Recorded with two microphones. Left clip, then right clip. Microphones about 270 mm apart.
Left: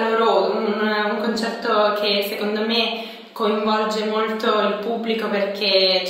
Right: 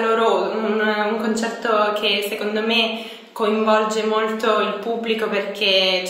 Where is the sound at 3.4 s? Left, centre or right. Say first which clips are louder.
Right 2 dB; centre.